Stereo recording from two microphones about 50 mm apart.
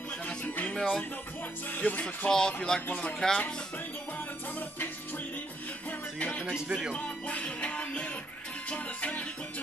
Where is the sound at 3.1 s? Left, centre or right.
Centre.